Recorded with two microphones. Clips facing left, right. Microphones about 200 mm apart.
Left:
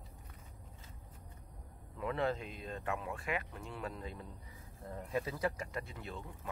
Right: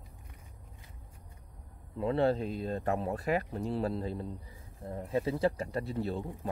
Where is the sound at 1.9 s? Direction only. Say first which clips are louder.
Right 8 dB; 30° right (ahead or behind).